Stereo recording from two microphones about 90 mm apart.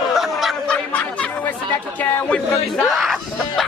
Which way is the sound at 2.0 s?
10° left (ahead or behind).